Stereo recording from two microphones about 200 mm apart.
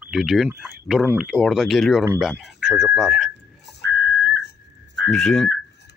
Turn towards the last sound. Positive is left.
turn(degrees=0)  # may be behind; listen again after turning